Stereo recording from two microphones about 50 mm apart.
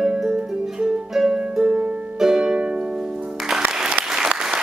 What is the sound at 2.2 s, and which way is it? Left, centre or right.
Music, centre.